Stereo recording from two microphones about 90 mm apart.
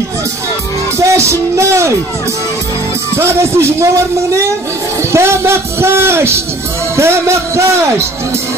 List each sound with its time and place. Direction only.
0.9 s music: 30° right (ahead or behind)
3.2 s a man's voice: 30° right (ahead or behind)
5.1 s a man's voice: 30° right (ahead or behind)